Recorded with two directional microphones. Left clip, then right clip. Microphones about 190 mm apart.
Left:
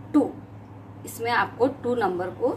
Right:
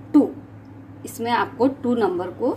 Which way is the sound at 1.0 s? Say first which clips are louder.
Right 2 dB; 20° right (ahead or behind).